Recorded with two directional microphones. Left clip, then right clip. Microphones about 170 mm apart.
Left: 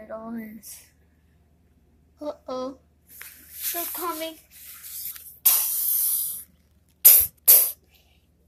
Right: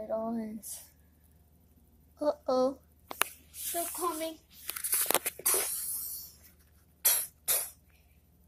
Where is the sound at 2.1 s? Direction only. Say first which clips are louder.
Right 3 dB; 25° right (ahead or behind).